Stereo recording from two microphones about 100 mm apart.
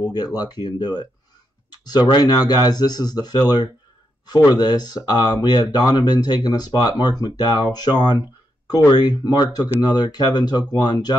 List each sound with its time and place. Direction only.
0.1 s speech: 40° left (ahead or behind)
2.0 s speech: 45° left (ahead or behind)
4.6 s speech: 45° left (ahead or behind)